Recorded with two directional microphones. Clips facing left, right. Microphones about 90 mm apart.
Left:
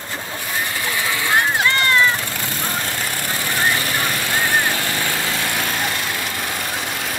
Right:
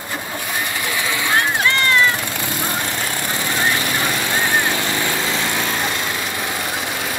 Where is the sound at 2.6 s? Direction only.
20° right (ahead or behind).